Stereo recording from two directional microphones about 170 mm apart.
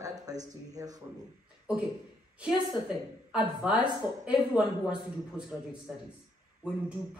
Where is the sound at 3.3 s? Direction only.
5° right (ahead or behind).